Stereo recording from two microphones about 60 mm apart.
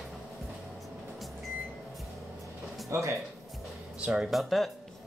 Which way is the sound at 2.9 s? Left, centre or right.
Right.